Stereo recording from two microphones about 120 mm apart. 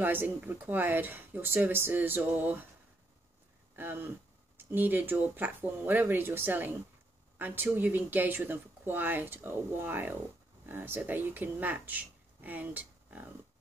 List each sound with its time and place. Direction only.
0.0 s speech: 15° right (ahead or behind)
3.7 s speech: 20° right (ahead or behind)